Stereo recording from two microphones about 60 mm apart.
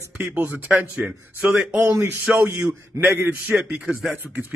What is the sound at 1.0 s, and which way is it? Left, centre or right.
Speech, centre.